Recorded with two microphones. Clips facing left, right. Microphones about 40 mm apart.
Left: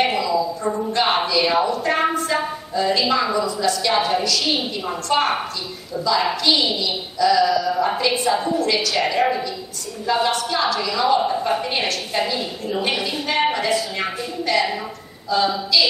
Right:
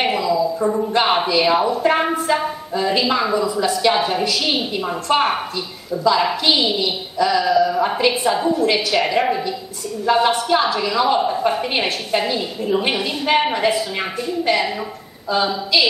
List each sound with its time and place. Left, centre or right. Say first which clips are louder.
0.0 s a sound: right 1 dB; centre
1.0 s a woman's voice: right 1 dB; centre
3.9 s speech: even; centre
4.2 s a woman's voice: right 2 dB; centre
10.0 s a woman's voice: right 4 dB; right